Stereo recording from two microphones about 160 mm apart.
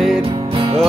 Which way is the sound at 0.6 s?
35° right (ahead or behind).